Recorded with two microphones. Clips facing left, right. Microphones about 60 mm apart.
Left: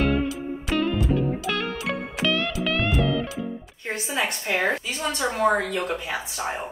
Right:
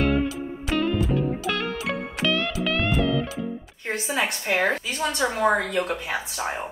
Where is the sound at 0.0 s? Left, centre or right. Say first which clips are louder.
Even; centre.